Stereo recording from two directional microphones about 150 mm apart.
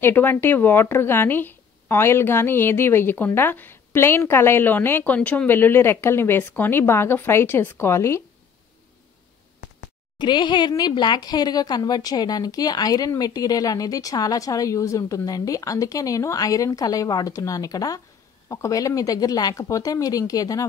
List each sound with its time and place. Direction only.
0.0 s speech: 15° left (ahead or behind)
10.1 s speech: 30° left (ahead or behind)